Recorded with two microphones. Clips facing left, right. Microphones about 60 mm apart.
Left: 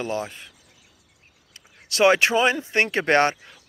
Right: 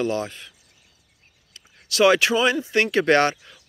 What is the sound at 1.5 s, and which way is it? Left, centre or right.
Speech, left.